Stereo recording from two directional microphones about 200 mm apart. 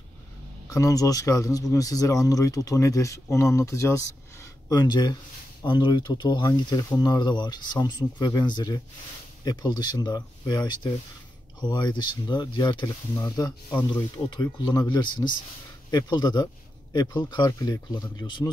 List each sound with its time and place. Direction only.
0.7 s speech: 15° left (ahead or behind)